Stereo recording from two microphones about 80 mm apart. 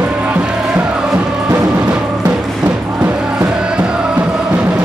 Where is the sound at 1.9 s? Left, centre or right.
Centre.